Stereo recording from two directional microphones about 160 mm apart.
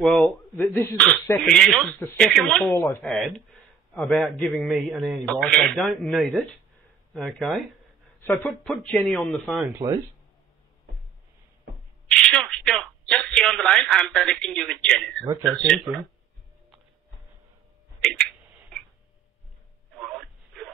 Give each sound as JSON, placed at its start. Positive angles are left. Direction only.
{"t": 0.0, "sound": "speech", "side_deg": 5}
{"t": 2.7, "sound": "speech", "side_deg": 15}
{"t": 8.2, "sound": "speech", "side_deg": 15}
{"t": 8.6, "sound": "a man's voice", "side_deg": 5}
{"t": 12.1, "sound": "speech", "side_deg": 5}
{"t": 18.0, "sound": "tick", "side_deg": 5}
{"t": 20.0, "sound": "a sound", "side_deg": 0}